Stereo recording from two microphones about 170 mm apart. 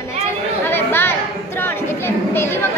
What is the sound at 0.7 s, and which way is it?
Chatter, 10° left (ahead or behind).